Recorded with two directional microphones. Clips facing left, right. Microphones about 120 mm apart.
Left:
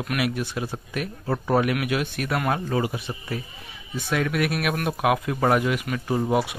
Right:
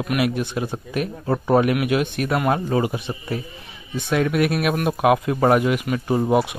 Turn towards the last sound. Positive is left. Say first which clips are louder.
# right 4 dB
turn(degrees=-25)  # may be behind; listen again after turning